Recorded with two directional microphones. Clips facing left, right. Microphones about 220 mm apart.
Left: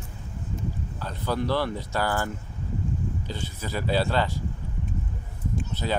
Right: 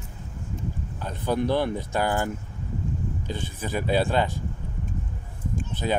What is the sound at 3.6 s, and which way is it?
Speech, 15° right (ahead or behind).